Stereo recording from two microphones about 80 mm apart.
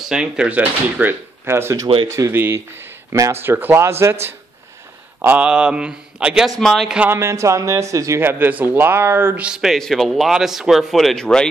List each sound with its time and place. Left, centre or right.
0.1 s a man's voice: centre; by 2.3 s right
2.3 s a man's voice: right
5.2 s a man's voice: centre
6.6 s speech: centre
7.1 s a man's voice: right
8.2 s speech: right
9.4 s a man's voice: centre
9.8 s speech: centre